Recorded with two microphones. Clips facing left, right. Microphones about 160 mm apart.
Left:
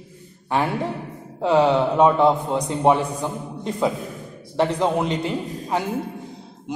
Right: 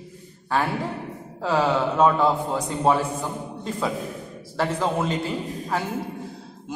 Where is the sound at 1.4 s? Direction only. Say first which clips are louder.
Left 5 dB; 20° left (ahead or behind).